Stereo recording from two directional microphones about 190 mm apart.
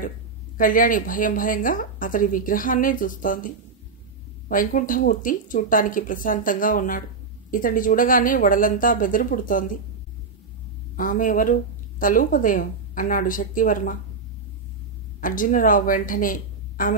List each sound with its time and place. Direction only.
0.6 s a woman's voice: 45° left (ahead or behind)
11.0 s a woman's voice: 45° left (ahead or behind)
15.1 s a woman's voice: 45° left (ahead or behind)